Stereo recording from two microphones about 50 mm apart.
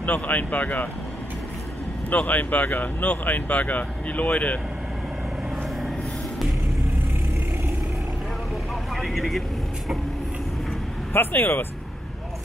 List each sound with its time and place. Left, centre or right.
0.0 s speech: left
2.0 s speech: left
8.9 s vehicle: centre
11.1 s speech: left